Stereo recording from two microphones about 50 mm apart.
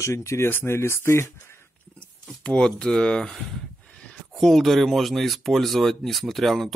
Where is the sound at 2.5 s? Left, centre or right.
Centre.